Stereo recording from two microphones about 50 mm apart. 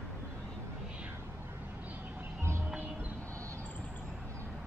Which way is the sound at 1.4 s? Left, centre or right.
Right.